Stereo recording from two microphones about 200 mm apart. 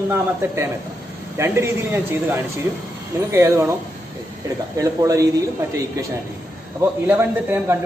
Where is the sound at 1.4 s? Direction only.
10° right (ahead or behind).